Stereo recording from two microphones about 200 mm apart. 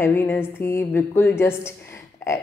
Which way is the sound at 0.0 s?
10° left (ahead or behind).